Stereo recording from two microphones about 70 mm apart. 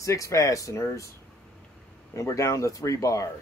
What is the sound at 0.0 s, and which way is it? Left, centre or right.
Speech, left.